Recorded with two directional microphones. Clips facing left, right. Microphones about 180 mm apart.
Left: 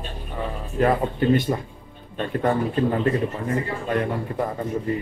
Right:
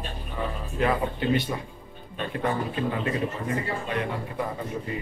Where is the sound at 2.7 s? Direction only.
45° left (ahead or behind).